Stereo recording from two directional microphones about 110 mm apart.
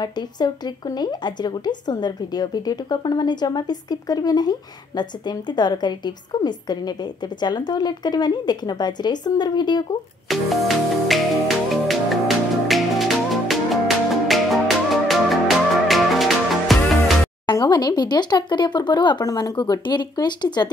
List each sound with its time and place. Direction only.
0.0 s a woman's voice: 40° left (ahead or behind)
10.2 s music: centre (ahead or behind)
17.5 s a woman's voice: 40° left (ahead or behind)